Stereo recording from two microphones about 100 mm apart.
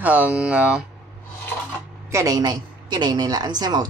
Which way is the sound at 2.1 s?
35° right (ahead or behind).